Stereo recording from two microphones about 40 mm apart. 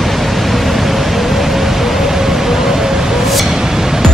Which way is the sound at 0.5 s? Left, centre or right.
Centre.